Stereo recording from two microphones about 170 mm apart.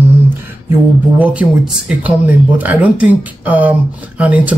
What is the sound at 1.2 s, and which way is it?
Speech, 10° right (ahead or behind).